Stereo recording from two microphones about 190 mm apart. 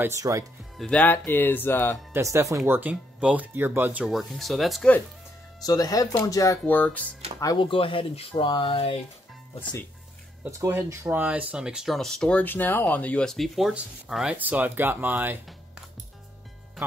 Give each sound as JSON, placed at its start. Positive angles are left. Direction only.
{"t": 0.0, "sound": "speech", "side_deg": -15}
{"t": 0.7, "sound": "speech", "side_deg": 5}
{"t": 2.1, "sound": "speech", "side_deg": -15}
{"t": 5.6, "sound": "speech", "side_deg": 20}
{"t": 7.3, "sound": "speech", "side_deg": 20}
{"t": 10.6, "sound": "speech", "side_deg": -15}